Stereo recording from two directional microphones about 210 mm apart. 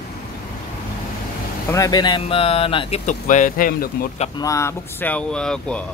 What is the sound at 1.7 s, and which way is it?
Speech, 15° left (ahead or behind).